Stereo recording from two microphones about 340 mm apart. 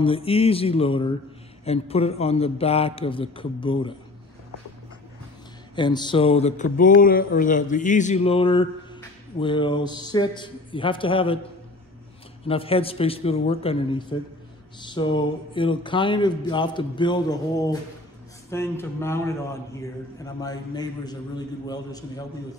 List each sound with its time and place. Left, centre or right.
0.0 s a man's voice: centre
5.8 s a sound: centre
9.4 s a man's voice: centre
12.4 s a man's voice: centre